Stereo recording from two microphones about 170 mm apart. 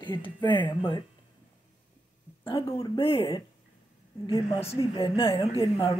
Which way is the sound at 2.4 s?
30° left (ahead or behind).